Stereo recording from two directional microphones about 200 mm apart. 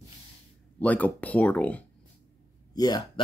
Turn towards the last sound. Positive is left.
turn(degrees=20)  # may be behind; listen again after turning